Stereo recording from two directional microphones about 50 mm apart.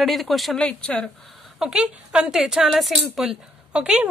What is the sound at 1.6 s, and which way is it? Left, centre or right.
A woman's voice, centre.